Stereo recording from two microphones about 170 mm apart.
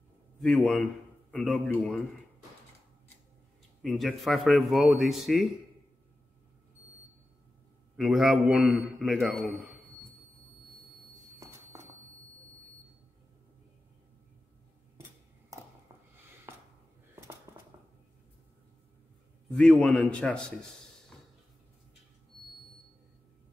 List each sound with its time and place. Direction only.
0.4 s a man's voice: 5° left (ahead or behind)
3.8 s speech: centre (ahead or behind)
8.0 s speech: centre (ahead or behind)
11.3 s a sound: 20° right (ahead or behind)
17.5 s a sound: 20° right (ahead or behind)
19.5 s speech: 5° left (ahead or behind)